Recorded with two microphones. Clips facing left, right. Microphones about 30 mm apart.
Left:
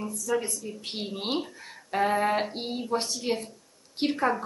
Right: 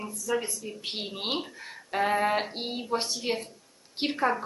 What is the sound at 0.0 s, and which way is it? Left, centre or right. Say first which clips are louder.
A woman's voice: left 1 dB; centre.